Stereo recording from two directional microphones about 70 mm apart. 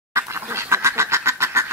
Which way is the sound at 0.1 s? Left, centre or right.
Right.